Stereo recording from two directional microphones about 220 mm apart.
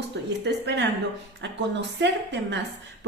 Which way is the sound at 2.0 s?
55° right (ahead or behind).